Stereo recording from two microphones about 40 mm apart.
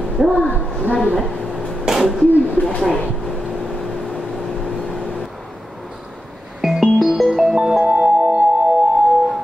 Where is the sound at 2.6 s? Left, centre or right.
Left.